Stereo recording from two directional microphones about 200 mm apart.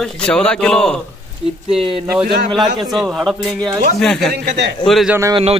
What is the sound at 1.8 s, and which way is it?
Speech, 25° right (ahead or behind).